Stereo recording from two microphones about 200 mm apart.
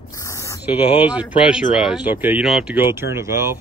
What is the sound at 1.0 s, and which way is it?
Speech, 5° right (ahead or behind).